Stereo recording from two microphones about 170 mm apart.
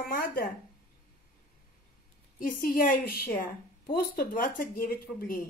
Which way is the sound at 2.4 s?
55° left (ahead or behind).